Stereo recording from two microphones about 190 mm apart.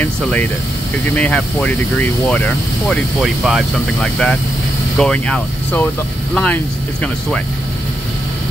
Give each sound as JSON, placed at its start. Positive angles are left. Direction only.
{"t": 0.0, "sound": "speech", "side_deg": 10}